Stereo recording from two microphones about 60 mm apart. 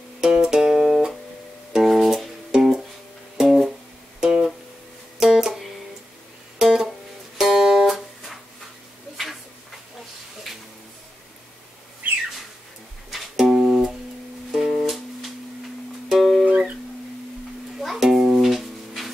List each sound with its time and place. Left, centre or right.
0.2 s music: centre
4.2 s guitar: centre
5.2 s music: centre
13.1 s music: centre
14.5 s music: centre
16.4 s music: right
17.7 s music: centre